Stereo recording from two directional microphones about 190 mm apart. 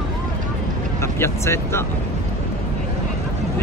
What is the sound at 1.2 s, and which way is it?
Speech, 15° left (ahead or behind).